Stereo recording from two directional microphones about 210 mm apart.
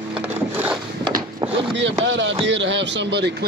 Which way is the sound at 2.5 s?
60° right (ahead or behind).